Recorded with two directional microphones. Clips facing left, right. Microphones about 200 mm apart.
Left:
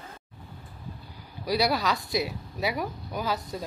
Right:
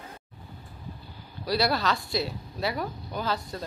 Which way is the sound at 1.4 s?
15° left (ahead or behind).